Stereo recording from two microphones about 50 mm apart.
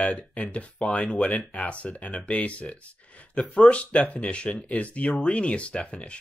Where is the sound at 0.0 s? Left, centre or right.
Left.